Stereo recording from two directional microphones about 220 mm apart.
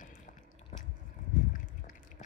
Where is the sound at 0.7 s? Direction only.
35° left (ahead or behind).